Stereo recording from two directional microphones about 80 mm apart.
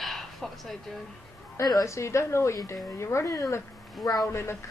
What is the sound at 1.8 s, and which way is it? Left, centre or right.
Speech, left.